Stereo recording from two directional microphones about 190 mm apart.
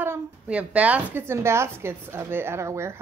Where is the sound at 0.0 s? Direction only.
10° right (ahead or behind).